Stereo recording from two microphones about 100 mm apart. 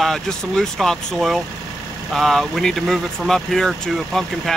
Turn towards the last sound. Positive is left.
turn(degrees=5)  # may be behind; listen again after turning